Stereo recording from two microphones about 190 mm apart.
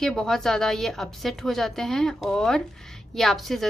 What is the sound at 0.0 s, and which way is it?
A woman's voice, centre (ahead or behind).